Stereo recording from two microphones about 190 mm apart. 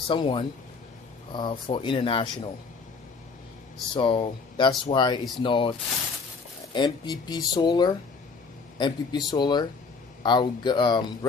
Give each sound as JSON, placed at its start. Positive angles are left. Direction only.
{"t": 0.1, "sound": "speech", "side_deg": 25}
{"t": 3.9, "sound": "speech", "side_deg": 25}